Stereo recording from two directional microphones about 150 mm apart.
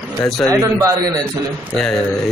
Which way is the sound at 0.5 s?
20° right (ahead or behind).